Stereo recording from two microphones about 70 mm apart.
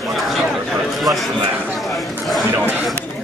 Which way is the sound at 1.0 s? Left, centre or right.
Centre.